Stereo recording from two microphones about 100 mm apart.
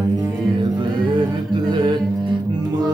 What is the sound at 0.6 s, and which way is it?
Music, 50° right (ahead or behind).